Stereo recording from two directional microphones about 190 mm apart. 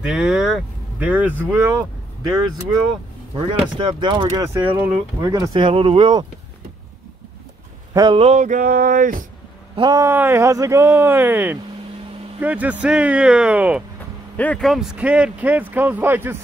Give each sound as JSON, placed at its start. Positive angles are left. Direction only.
{"t": 0.0, "sound": "speech", "side_deg": -5}
{"t": 3.7, "sound": "speech", "side_deg": -25}
{"t": 4.6, "sound": "speech", "side_deg": -10}
{"t": 5.3, "sound": "speech", "side_deg": -20}
{"t": 7.9, "sound": "speech", "side_deg": -25}
{"t": 9.8, "sound": "speech", "side_deg": -20}
{"t": 14.3, "sound": "speech", "side_deg": 10}